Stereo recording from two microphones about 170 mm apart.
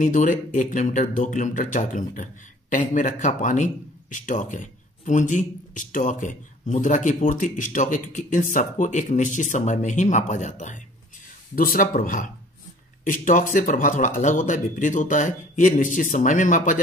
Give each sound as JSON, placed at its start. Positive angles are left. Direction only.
{"t": 0.0, "sound": "speech", "side_deg": 50}